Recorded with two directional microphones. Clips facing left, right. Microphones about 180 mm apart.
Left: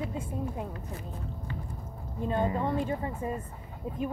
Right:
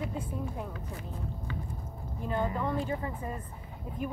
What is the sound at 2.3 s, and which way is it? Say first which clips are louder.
Speech: left 2 dB; 25° left (ahead or behind).